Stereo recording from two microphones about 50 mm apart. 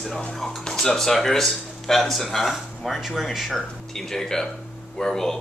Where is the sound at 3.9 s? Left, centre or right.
Centre.